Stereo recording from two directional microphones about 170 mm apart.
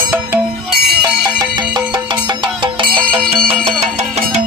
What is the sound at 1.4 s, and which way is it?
Music, 25° right (ahead or behind).